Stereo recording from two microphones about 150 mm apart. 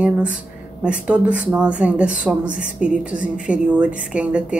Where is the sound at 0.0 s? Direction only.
10° right (ahead or behind).